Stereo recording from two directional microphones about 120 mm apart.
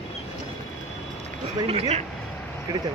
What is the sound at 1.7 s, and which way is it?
Speech, 60° right (ahead or behind).